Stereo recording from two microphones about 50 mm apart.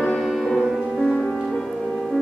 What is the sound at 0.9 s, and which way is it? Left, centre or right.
Music, centre.